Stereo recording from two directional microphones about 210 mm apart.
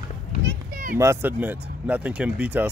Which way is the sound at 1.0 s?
10° right (ahead or behind).